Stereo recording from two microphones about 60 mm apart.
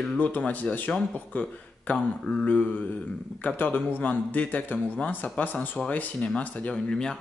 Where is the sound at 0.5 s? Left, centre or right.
Left.